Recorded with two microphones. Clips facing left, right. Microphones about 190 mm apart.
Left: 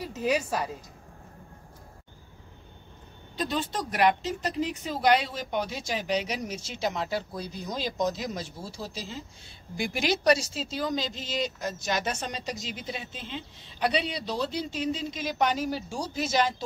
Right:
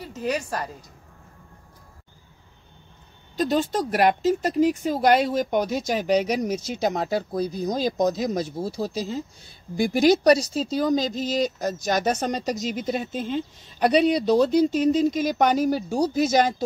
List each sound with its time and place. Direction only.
0.0 s a woman's voice: centre (ahead or behind)
3.3 s speech: 45° right (ahead or behind)